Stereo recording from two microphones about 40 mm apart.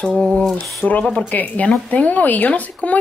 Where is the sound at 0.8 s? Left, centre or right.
Left.